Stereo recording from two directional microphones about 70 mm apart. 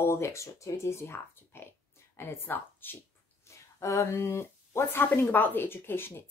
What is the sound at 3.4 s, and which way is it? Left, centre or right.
Speech, left.